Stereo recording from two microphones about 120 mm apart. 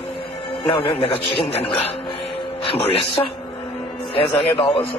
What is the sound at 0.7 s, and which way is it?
A man's voice, 50° left (ahead or behind).